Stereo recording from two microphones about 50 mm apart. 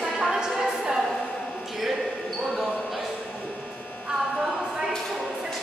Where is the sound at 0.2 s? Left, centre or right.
Centre.